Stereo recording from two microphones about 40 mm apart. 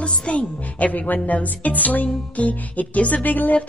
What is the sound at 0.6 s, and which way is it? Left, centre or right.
A woman's voice, left.